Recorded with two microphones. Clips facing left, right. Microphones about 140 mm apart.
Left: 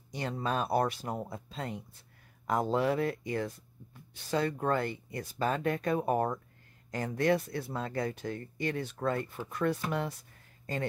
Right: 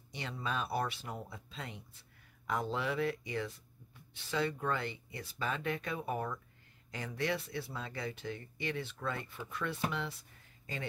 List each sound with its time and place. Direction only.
0.1 s speech: 45° left (ahead or behind)